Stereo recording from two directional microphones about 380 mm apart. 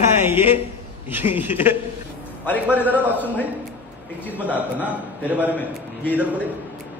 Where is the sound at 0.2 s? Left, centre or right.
Centre.